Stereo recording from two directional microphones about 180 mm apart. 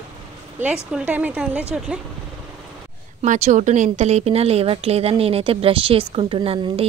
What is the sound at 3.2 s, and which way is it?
A woman's voice, 45° right (ahead or behind).